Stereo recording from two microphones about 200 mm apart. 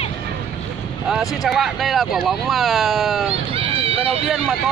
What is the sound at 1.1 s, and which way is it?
Speech, centre (ahead or behind).